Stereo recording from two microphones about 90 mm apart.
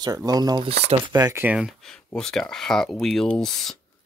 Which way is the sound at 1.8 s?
10° left (ahead or behind).